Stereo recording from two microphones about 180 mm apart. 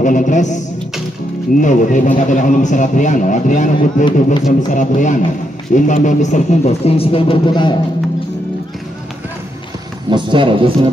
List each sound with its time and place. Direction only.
0.0 s a man's voice: 45° left (ahead or behind)
1.6 s a man's voice: 45° left (ahead or behind); by 7.7 s 25° left (ahead or behind)
10.0 s speech: 25° right (ahead or behind)